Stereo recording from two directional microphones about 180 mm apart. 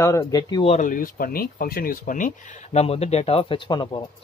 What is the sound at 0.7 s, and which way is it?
Speech, 50° left (ahead or behind).